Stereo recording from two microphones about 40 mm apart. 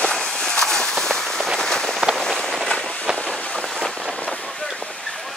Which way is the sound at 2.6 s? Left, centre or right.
Centre.